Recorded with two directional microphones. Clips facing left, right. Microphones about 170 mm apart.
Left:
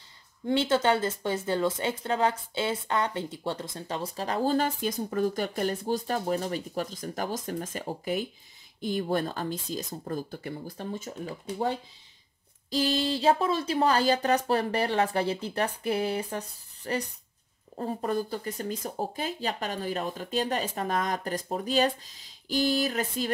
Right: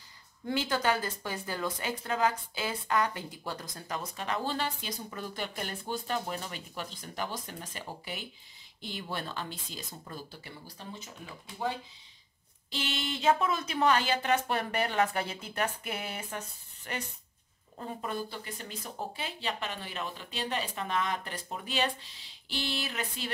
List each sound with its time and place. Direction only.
0.5 s speech: 25° left (ahead or behind); by 23.3 s 40° left (ahead or behind)